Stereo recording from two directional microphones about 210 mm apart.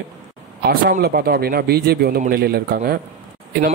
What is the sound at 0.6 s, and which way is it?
Speech, 45° right (ahead or behind).